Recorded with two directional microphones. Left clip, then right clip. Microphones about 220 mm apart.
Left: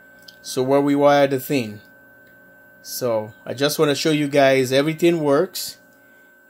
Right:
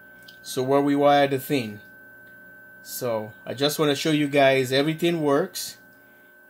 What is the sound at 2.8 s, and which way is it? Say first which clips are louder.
Speech: left 5 dB; 35° left (ahead or behind).